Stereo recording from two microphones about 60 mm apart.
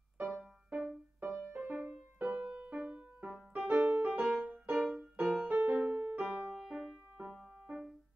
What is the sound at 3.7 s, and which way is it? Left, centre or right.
Music, centre.